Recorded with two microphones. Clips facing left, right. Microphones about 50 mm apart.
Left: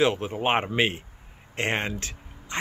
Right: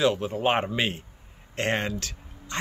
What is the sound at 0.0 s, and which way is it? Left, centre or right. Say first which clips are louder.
Speech: even; left.